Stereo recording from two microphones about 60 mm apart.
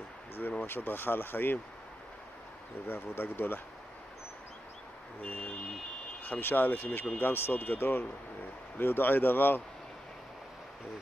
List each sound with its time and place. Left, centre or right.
0.4 s speech: left
2.9 s speech: left
5.2 s speech: left